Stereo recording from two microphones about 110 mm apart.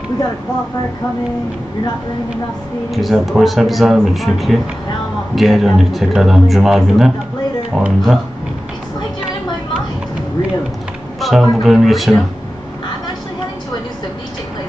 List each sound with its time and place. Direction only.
2.9 s speech: centre (ahead or behind)
11.1 s speech: centre (ahead or behind)